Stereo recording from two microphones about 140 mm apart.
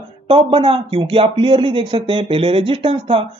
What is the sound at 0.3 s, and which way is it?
A man's voice, 40° right (ahead or behind).